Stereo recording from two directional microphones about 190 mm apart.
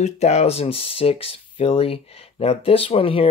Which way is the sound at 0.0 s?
35° left (ahead or behind).